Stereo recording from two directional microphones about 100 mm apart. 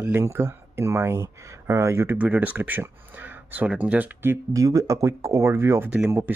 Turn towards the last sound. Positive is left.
turn(degrees=-25)  # may be behind; listen again after turning